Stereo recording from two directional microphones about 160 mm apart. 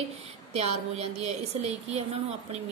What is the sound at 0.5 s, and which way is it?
A woman's voice, 40° right (ahead or behind).